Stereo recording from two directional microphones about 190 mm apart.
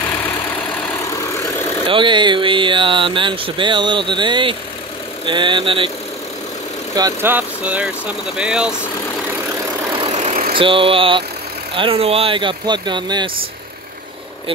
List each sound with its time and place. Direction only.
1.9 s speech: 25° right (ahead or behind)
7.0 s speech: 15° right (ahead or behind)
9.8 s vehicle: 25° right (ahead or behind)
10.1 s vehicle: 40° right (ahead or behind)
10.6 s speech: 30° right (ahead or behind)